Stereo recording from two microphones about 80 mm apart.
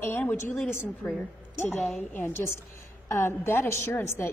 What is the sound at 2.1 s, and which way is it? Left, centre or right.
A woman's voice, left.